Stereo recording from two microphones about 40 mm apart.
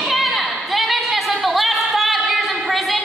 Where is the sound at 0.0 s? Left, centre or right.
Centre.